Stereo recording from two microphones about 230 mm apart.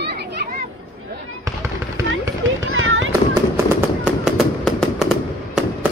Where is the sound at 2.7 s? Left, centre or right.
Right.